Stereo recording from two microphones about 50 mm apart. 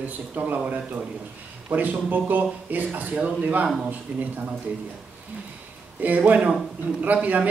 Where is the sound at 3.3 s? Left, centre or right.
Right.